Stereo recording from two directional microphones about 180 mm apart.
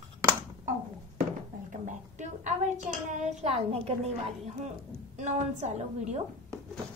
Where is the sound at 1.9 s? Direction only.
40° right (ahead or behind).